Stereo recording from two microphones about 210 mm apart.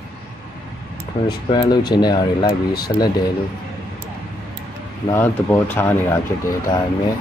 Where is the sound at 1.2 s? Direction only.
20° left (ahead or behind).